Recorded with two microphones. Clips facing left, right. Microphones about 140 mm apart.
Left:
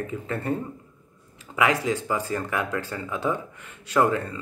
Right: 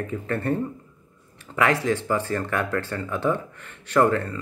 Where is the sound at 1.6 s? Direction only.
15° left (ahead or behind).